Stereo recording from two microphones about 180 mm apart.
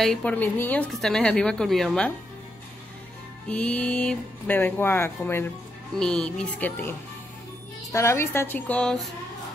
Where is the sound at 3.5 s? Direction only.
5° left (ahead or behind).